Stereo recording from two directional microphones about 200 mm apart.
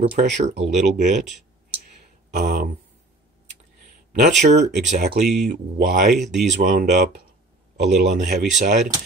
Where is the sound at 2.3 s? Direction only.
40° right (ahead or behind).